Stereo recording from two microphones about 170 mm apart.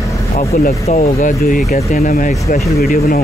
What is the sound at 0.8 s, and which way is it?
Speech, 50° left (ahead or behind).